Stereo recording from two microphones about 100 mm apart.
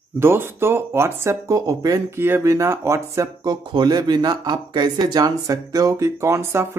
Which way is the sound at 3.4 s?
45° right (ahead or behind).